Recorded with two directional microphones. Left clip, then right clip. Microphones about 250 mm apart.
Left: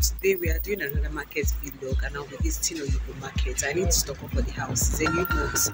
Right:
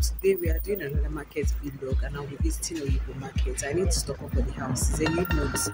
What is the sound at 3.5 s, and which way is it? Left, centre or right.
Speech, centre.